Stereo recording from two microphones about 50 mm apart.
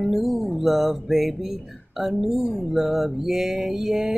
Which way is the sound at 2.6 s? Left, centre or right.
Centre.